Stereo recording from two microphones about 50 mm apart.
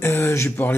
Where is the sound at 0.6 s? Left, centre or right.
Left.